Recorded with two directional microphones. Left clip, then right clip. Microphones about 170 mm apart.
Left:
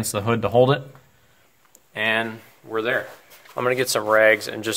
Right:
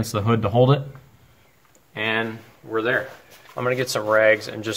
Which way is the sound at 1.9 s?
70° left (ahead or behind).